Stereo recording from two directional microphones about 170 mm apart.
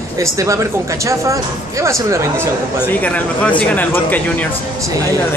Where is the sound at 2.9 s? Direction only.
10° left (ahead or behind).